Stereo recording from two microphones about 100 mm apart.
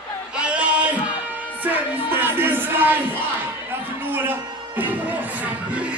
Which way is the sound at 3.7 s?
20° right (ahead or behind).